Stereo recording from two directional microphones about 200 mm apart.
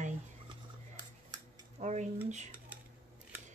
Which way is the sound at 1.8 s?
35° right (ahead or behind).